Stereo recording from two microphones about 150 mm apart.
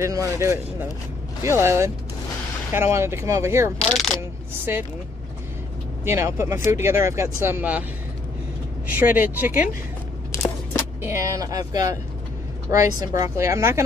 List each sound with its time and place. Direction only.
0.0 s speech: 20° right (ahead or behind)
3.8 s coin: centre (ahead or behind)
4.7 s speech: 15° right (ahead or behind)
6.0 s speech: 20° right (ahead or behind)
8.9 s speech: 15° right (ahead or behind)
11.0 s speech: 20° right (ahead or behind)